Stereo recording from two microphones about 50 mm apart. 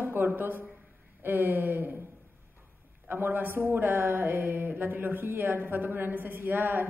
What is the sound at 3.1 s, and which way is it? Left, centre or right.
Speech, right.